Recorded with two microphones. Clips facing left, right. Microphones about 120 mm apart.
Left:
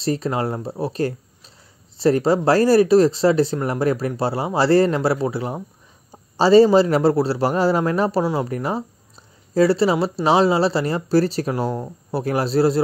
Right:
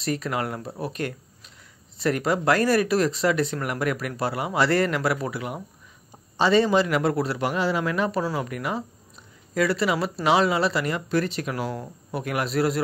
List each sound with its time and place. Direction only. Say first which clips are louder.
0.0 s speech: left 5 dB; 30° left (ahead or behind)